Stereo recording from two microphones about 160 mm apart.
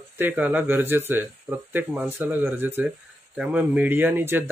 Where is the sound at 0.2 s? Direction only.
10° right (ahead or behind).